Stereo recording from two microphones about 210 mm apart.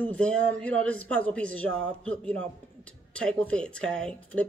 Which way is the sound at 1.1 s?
5° left (ahead or behind).